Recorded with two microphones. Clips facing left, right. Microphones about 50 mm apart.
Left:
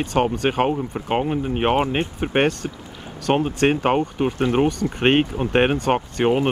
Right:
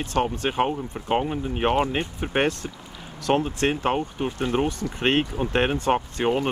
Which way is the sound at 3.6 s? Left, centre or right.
Left.